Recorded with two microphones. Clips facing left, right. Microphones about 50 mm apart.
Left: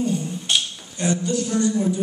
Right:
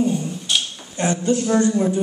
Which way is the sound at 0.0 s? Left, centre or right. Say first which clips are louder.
Right 3 dB; centre.